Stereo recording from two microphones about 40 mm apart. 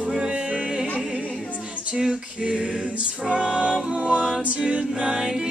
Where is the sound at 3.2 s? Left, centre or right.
Centre.